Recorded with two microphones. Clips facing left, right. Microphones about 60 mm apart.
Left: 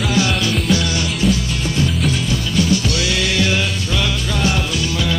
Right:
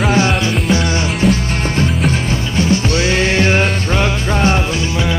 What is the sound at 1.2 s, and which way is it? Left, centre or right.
Music, right.